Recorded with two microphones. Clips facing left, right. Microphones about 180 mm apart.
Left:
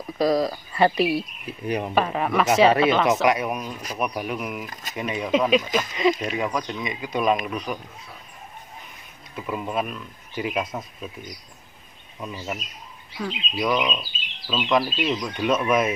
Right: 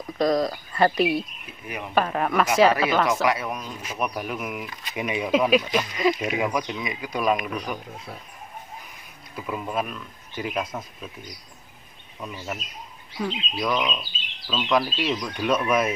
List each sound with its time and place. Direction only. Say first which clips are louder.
0.2 s speech: left 1 dB; 5° left (ahead or behind)
1.4 s speech: left 8 dB; 35° left (ahead or behind)
2.0 s speech: right 2 dB; centre (ahead or behind)
3.1 s speech: left 3 dB; 20° left (ahead or behind)
4.0 s speech: left 1 dB; centre (ahead or behind)
9.5 s speech: left 1 dB; centre (ahead or behind)
12.2 s speech: left 2 dB; centre (ahead or behind)